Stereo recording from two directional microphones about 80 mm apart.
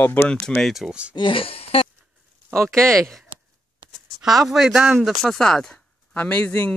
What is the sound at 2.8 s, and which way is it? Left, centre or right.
Speech, right.